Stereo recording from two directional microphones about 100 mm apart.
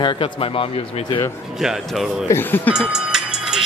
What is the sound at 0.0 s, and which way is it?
Speech, 60° left (ahead or behind).